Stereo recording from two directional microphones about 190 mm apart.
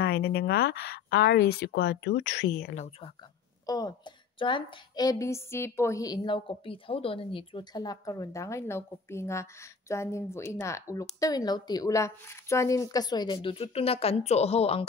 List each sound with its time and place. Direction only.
0.0 s speech: 60° left (ahead or behind)
2.7 s a woman's voice: 40° left (ahead or behind)
3.6 s a woman's voice: 20° left (ahead or behind)